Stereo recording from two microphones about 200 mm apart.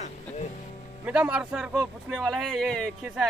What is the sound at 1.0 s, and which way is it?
Speech, 5° right (ahead or behind).